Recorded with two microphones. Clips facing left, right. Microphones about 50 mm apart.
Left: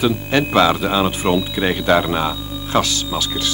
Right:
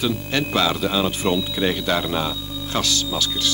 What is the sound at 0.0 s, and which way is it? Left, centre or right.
Speech, left.